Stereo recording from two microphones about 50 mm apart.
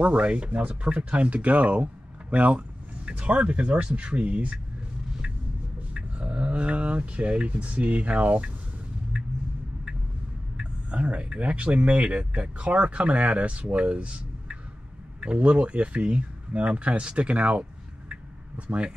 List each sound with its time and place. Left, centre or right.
0.0 s speech: right
5.9 s speech: right
10.6 s speech: right
18.7 s speech: right